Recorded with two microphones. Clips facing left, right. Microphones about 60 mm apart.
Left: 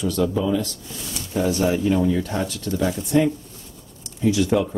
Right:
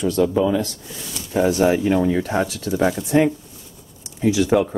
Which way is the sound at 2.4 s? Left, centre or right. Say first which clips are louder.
Right 3 dB; centre.